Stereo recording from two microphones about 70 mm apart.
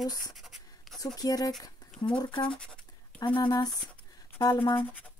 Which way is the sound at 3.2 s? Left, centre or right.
Left.